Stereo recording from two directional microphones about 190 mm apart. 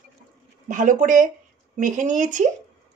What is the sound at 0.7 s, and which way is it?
A woman's voice, 45° right (ahead or behind).